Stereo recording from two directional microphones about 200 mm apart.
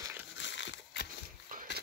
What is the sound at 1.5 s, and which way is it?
Pig, 45° right (ahead or behind).